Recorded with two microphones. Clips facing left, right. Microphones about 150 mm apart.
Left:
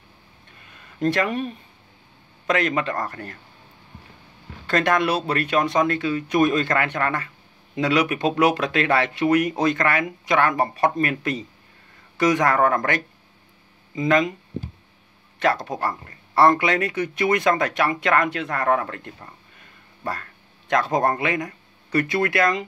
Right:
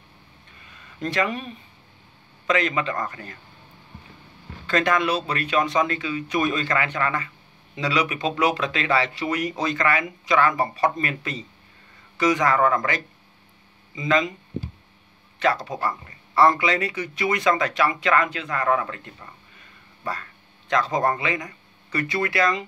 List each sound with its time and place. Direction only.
0.7 s a sound: 50° left (ahead or behind)
2.4 s speech: 55° left (ahead or behind)
4.6 s speech: 55° left (ahead or behind)
15.3 s speech: 55° left (ahead or behind)